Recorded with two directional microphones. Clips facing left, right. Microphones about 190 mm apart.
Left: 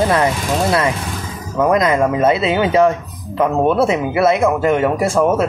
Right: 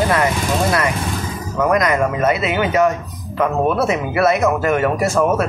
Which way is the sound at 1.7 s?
25° left (ahead or behind).